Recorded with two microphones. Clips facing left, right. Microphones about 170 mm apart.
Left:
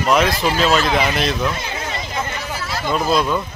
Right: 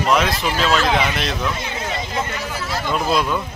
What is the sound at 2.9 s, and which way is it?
Speech, 5° right (ahead or behind).